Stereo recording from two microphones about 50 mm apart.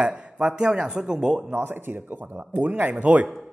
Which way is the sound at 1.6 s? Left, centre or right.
Right.